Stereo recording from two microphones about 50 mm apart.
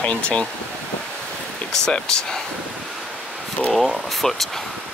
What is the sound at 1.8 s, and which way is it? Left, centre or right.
Speech, centre.